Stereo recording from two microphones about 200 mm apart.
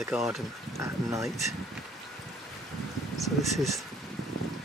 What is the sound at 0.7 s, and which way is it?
Speech, 15° right (ahead or behind).